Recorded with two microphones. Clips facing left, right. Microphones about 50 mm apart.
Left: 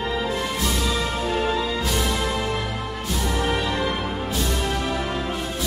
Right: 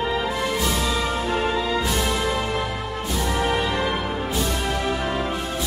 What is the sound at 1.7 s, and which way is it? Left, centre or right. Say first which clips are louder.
Music: right 1 dB; centre.